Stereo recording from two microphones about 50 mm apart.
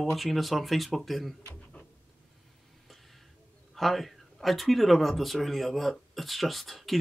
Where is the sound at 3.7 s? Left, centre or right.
Centre.